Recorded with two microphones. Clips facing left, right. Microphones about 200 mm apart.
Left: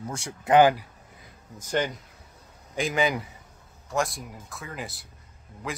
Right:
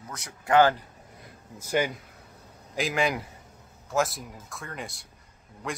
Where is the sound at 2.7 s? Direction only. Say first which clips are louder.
Left 1 dB; centre (ahead or behind).